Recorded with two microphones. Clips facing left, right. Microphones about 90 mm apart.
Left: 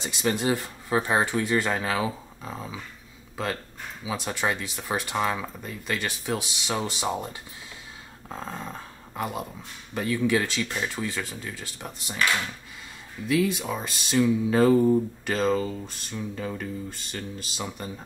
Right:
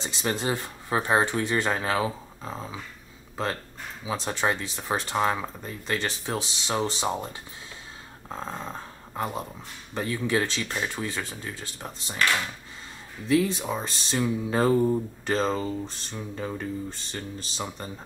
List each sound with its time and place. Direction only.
0.0 s speech: 35° right (ahead or behind)
4.0 s speech: 35° right (ahead or behind)
9.1 s speech: 30° right (ahead or behind)
13.3 s speech: 35° right (ahead or behind)